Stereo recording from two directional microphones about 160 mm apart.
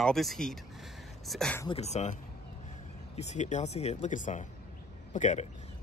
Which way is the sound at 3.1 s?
45° left (ahead or behind).